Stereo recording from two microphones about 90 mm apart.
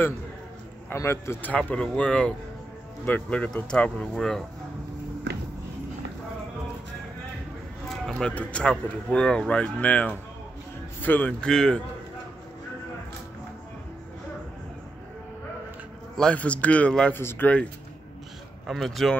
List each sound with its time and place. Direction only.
0.9 s a man's voice: 30° left (ahead or behind)
1.5 s speech: 15° left (ahead or behind)
7.9 s a sound: 5° left (ahead or behind)
8.3 s speech: 15° left (ahead or behind)
16.2 s speech: 15° left (ahead or behind)
17.1 s speech: 25° left (ahead or behind)
18.7 s speech: centre (ahead or behind)